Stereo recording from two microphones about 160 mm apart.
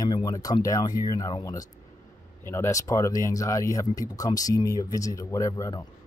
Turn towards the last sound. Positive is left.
turn(degrees=20)  # may be behind; listen again after turning